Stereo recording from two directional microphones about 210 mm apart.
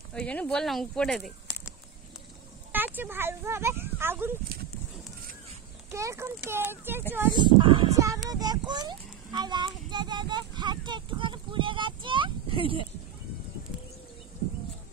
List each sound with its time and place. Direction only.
0.1 s speech: 5° left (ahead or behind)
2.7 s speech: 10° right (ahead or behind)
5.9 s speech: 15° right (ahead or behind)
7.3 s speech: 20° right (ahead or behind)